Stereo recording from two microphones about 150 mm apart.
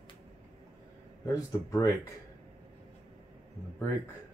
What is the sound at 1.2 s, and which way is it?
Speech, 20° left (ahead or behind).